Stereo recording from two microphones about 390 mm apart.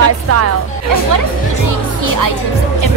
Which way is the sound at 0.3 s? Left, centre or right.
Right.